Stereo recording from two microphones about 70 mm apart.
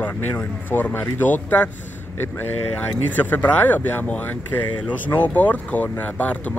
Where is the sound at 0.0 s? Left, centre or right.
Left.